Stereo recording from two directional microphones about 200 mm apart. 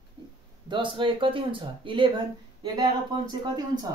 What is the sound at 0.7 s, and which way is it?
A man's voice, 25° right (ahead or behind).